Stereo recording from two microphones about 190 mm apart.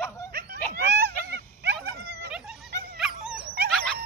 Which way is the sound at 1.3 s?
60° right (ahead or behind).